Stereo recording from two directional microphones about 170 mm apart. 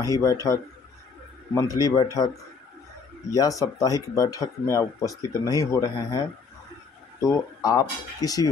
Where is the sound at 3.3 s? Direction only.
20° left (ahead or behind).